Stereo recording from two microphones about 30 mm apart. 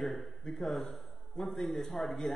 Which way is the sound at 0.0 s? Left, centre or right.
Centre.